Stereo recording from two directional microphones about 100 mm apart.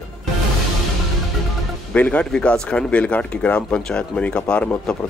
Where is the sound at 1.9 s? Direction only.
15° left (ahead or behind).